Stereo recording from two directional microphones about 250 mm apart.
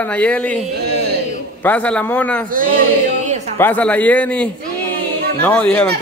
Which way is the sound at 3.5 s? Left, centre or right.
Centre.